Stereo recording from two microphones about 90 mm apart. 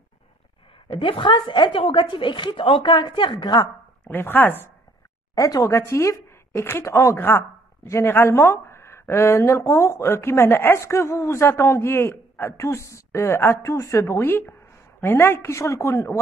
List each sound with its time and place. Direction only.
0.8 s a woman's voice: 70° left (ahead or behind)
4.0 s speech: 20° left (ahead or behind)
5.3 s speech: 40° left (ahead or behind)